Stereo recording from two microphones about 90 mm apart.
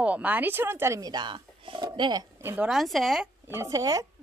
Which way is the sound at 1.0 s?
50° right (ahead or behind).